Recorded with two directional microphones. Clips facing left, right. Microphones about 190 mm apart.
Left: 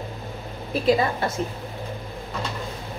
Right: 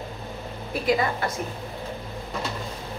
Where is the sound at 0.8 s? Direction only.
30° left (ahead or behind).